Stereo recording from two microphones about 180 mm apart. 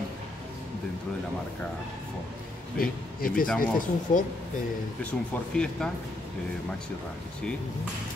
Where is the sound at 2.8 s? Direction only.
55° left (ahead or behind).